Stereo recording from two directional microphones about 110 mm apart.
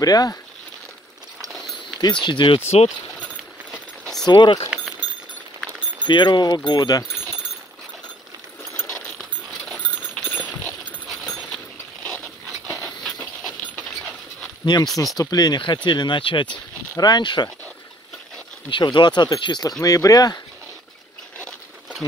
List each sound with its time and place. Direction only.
0.0 s speech: 35° left (ahead or behind)
2.0 s speech: 40° left (ahead or behind)
3.7 s a sound: 5° left (ahead or behind)
4.3 s speech: 45° left (ahead or behind)
5.0 s clip-clop: 45° left (ahead or behind)
6.0 s speech: 45° left (ahead or behind)
8.8 s a sound: 5° left (ahead or behind)
10.2 s clip-clop: 15° left (ahead or behind)
11.1 s a sound: 5° left (ahead or behind)
14.6 s speech: 40° left (ahead or behind)
18.7 s speech: 45° left (ahead or behind)
19.8 s speech: 30° left (ahead or behind)